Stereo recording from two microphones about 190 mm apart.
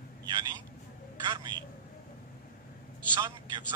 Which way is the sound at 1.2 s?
25° right (ahead or behind).